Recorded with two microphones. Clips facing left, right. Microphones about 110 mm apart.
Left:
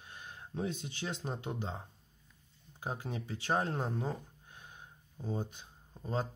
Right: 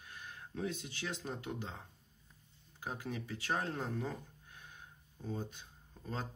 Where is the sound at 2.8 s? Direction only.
25° left (ahead or behind).